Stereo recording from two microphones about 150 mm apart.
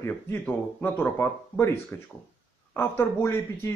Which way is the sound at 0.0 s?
15° left (ahead or behind).